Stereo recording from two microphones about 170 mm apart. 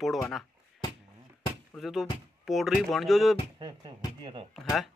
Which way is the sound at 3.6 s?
25° right (ahead or behind).